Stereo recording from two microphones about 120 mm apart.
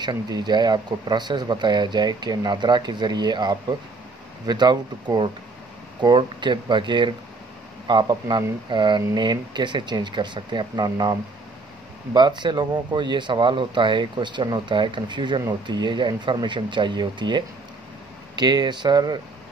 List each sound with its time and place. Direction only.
0.0 s speech: 35° right (ahead or behind)